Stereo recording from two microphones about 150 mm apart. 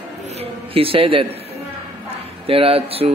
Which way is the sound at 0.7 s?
40° right (ahead or behind).